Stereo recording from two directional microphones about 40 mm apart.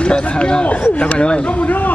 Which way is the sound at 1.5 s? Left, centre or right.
Left.